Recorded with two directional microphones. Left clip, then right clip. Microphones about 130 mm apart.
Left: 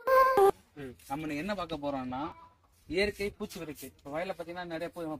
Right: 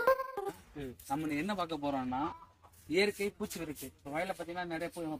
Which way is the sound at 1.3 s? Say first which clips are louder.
Left 2 dB; 5° left (ahead or behind).